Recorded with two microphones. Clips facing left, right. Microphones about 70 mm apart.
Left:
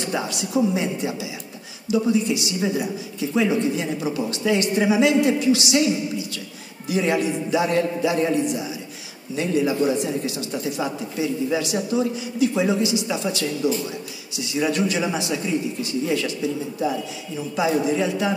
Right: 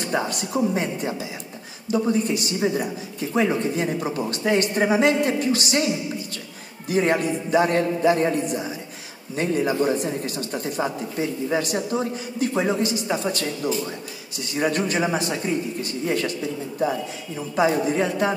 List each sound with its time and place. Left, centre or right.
0.0 s speech: right
17.6 s speech: right